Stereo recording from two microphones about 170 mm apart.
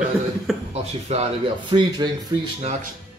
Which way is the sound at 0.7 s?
40° right (ahead or behind).